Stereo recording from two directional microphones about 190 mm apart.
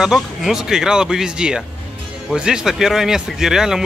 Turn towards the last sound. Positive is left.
turn(degrees=0)  # may be behind; listen again after turning